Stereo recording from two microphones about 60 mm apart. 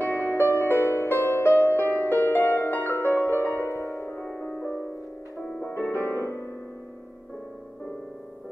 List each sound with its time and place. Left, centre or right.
0.0 s music: left
4.4 s music: left
5.8 s music: left